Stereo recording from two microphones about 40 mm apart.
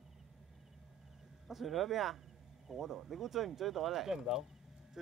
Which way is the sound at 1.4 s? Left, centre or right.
Centre.